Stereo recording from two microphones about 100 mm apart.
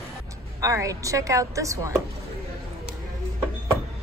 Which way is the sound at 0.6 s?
35° right (ahead or behind).